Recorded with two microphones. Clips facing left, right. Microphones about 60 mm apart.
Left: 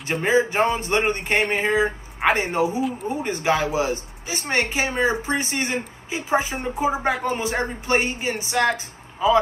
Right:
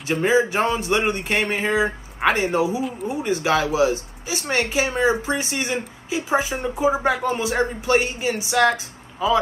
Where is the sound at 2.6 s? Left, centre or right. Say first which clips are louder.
Even; left.